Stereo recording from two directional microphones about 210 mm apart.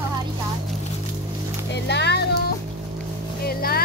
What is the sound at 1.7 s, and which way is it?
Music, 55° left (ahead or behind).